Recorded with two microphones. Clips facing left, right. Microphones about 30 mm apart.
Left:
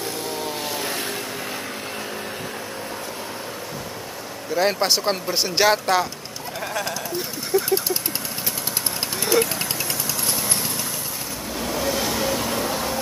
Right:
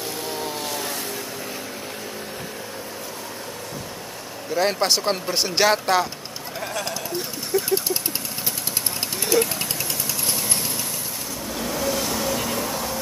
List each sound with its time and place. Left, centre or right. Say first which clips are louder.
0.4 s a sound: left 1 dB; centre
4.6 s speech: left 1 dB; centre
6.8 s sheep: left 1 dB; centre
9.2 s mechanisms: left 1 dB; centre
10.2 s vehicle: even; centre
11.6 s vehicle: left 1 dB; centre
12.5 s a sound: left 2 dB; left